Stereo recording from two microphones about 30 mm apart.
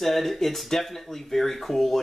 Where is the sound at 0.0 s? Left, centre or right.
Centre.